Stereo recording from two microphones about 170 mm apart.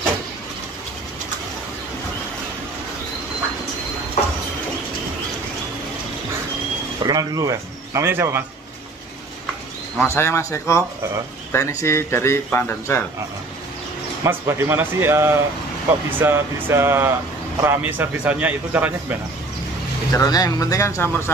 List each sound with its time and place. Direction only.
7.0 s speech: 25° right (ahead or behind)
9.9 s speech: 15° left (ahead or behind)
14.2 s speech: 15° right (ahead or behind)
20.1 s speech: 20° left (ahead or behind)